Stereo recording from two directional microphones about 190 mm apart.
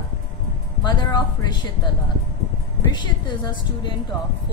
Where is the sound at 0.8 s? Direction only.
25° left (ahead or behind).